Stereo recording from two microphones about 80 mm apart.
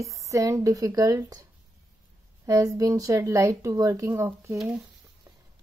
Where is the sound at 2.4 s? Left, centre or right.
Right.